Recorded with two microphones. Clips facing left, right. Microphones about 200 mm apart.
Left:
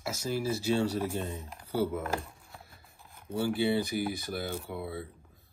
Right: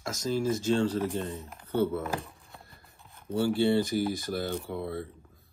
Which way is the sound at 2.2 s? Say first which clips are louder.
Right 1 dB; centre (ahead or behind).